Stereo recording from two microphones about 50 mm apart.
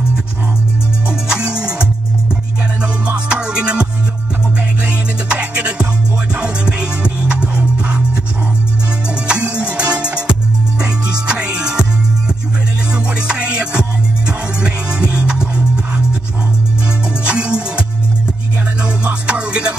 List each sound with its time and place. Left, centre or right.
1.3 s music: centre
4.8 s music: right
9.3 s music: right
12.9 s music: right
17.2 s music: right
19.2 s music: right